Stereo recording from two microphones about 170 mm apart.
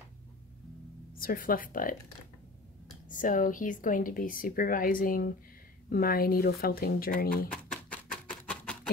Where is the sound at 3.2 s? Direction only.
50° left (ahead or behind).